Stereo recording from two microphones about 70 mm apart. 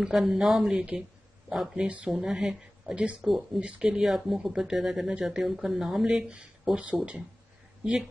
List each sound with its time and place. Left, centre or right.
0.0 s speech: centre
3.7 s speech: centre
4.0 s a woman's voice: centre